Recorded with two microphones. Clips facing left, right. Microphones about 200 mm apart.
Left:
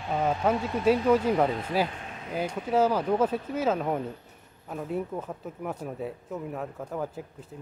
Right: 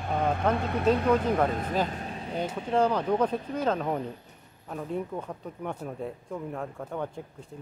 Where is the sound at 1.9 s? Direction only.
35° right (ahead or behind).